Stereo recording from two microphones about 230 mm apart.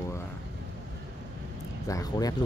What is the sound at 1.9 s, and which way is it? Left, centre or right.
Speech, centre.